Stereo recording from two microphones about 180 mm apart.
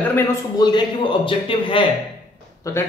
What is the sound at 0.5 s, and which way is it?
A man's voice, 25° left (ahead or behind).